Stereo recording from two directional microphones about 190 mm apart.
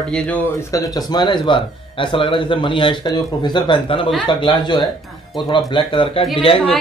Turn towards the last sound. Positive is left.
turn(degrees=30)  # may be behind; listen again after turning